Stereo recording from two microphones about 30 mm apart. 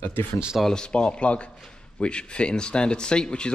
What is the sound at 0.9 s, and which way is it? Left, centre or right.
Speech, left.